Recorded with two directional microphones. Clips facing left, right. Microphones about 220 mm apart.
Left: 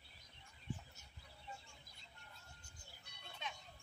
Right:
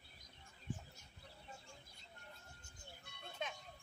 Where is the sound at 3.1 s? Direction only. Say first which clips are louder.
Right 5 dB; 50° right (ahead or behind).